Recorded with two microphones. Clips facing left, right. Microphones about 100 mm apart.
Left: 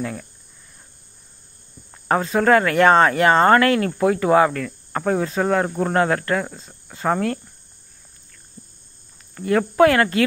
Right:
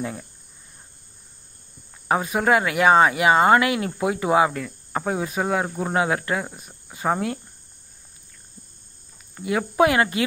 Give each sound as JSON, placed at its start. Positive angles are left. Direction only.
{"t": 0.0, "sound": "speech", "side_deg": -20}
{"t": 2.0, "sound": "speech", "side_deg": -15}
{"t": 9.4, "sound": "speech", "side_deg": -10}